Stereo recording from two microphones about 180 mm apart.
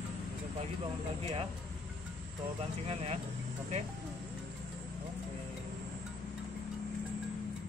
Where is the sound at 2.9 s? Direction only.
35° right (ahead or behind).